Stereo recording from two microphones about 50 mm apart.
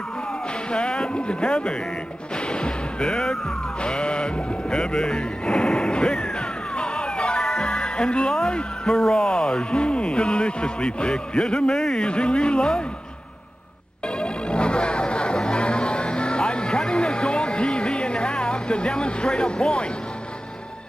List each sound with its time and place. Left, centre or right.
0.7 s speech: centre
2.4 s music: centre
3.8 s speech: centre
14.2 s music: left